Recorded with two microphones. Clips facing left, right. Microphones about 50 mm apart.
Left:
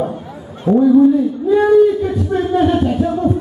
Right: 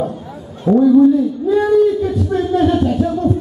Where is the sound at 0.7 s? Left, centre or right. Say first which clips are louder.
Even; centre.